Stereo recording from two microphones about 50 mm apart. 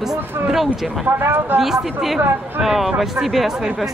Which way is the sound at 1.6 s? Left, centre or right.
Centre.